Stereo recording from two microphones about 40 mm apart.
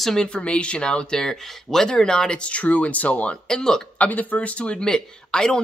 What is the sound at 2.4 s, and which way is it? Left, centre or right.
Speech, left.